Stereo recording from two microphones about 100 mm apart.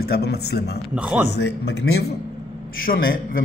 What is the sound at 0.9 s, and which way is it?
Speech, 10° right (ahead or behind).